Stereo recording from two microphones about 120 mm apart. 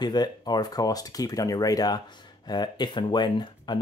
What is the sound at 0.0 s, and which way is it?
Speech, 35° left (ahead or behind).